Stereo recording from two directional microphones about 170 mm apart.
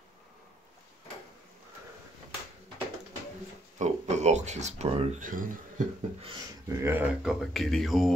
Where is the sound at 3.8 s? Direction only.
40° right (ahead or behind).